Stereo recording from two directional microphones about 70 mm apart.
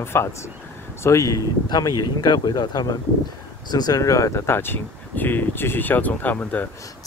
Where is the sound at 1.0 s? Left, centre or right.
Left.